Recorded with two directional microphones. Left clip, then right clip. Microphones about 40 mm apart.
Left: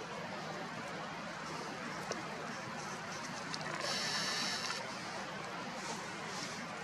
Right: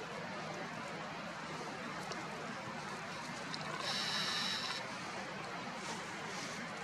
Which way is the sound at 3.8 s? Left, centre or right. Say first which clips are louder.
Even; right.